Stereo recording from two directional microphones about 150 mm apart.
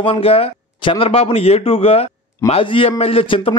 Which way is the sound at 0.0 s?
40° left (ahead or behind).